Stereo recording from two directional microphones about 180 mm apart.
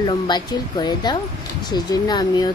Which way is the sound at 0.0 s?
25° left (ahead or behind).